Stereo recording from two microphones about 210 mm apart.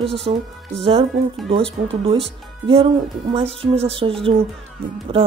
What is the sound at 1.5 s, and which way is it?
A woman's voice, 25° right (ahead or behind).